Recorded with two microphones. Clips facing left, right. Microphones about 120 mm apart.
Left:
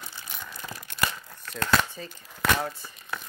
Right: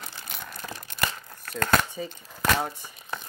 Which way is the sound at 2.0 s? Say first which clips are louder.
Right 6 dB; 5° right (ahead or behind).